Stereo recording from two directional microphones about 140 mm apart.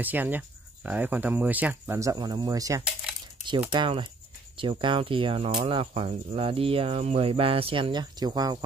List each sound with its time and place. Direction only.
0.0 s speech: 10° right (ahead or behind)
3.7 s cricket: 35° right (ahead or behind)